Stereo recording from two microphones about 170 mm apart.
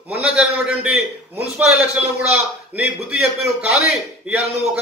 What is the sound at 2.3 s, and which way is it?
Speech, 5° right (ahead or behind).